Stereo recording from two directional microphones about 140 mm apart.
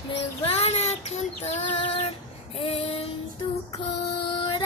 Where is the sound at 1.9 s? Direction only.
45° left (ahead or behind).